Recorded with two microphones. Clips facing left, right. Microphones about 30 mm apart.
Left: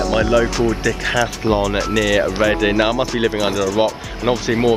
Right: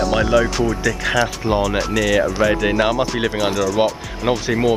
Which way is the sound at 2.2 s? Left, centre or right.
Left.